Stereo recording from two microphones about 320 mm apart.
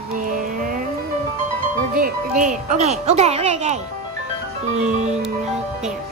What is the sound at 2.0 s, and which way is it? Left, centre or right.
A child's voice, right.